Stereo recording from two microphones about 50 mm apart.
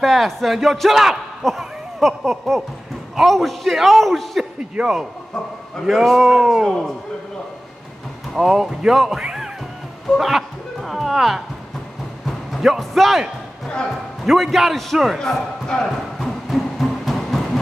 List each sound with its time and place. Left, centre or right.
0.0 s a man's voice: centre
1.6 s a sound: centre
3.2 s a man's voice: centre
4.6 s speech: centre
5.9 s a man's voice: centre
8.4 s speech: centre
10.1 s a sound: centre
12.3 s music: centre
14.2 s a man's voice: centre
16.2 s music: centre